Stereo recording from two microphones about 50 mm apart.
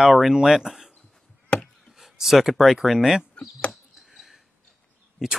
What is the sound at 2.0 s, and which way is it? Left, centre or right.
Speech, centre.